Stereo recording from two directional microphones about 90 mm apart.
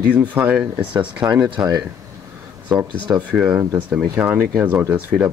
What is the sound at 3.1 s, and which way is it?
Speech, 25° right (ahead or behind).